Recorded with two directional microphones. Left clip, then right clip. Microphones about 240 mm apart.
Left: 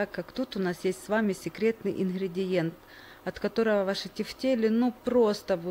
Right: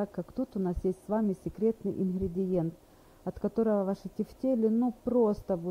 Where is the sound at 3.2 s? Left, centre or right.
Centre.